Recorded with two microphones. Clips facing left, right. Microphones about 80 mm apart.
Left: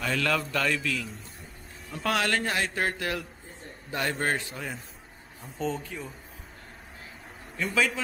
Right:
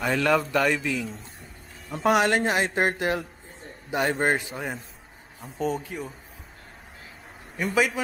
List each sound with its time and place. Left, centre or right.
0.0 s speech: right
0.9 s a man's voice: centre
2.0 s speech: right
7.5 s speech: centre